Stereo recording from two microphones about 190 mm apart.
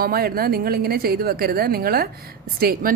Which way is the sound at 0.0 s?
55° right (ahead or behind).